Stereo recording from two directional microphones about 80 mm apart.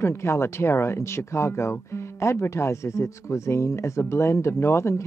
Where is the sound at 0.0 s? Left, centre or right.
Left.